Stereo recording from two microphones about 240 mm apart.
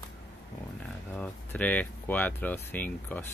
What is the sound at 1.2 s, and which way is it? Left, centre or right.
Speech, centre.